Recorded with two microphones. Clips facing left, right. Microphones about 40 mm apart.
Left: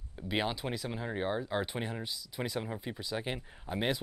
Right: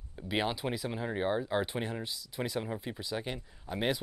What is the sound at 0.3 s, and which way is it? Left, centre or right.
Speech, centre.